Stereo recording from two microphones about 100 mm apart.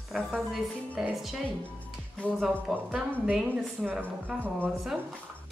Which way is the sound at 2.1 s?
10° left (ahead or behind).